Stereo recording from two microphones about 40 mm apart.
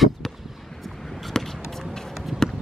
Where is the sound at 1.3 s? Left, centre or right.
Centre.